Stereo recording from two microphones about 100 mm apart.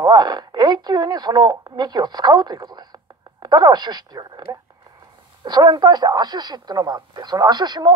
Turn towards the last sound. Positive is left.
turn(degrees=-45)  # may be behind; listen again after turning